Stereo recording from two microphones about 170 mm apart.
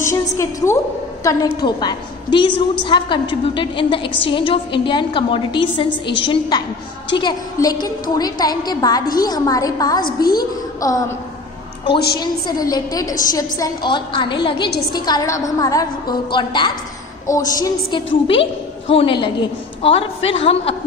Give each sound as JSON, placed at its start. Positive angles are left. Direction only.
{"t": 0.0, "sound": "a woman's voice", "side_deg": 15}
{"t": 11.8, "sound": "a woman's voice", "side_deg": 75}
{"t": 12.2, "sound": "a woman's voice", "side_deg": 25}